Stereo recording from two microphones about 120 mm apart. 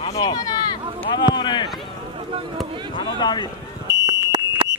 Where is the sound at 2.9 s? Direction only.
40° left (ahead or behind).